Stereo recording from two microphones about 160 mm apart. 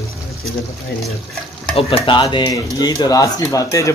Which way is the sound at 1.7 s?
35° left (ahead or behind).